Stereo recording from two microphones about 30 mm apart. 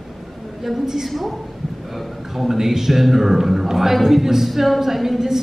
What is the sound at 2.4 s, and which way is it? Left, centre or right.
A woman's voice, centre.